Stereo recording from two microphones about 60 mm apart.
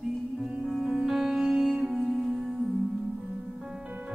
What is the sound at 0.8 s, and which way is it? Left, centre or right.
Music, centre.